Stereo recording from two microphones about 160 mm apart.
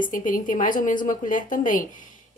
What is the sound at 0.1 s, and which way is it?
Speech, 55° left (ahead or behind).